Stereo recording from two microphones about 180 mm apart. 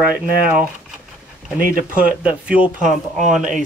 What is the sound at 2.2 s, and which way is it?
Speech, 5° right (ahead or behind).